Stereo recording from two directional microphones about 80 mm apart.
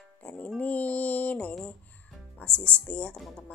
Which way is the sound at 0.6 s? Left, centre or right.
Centre.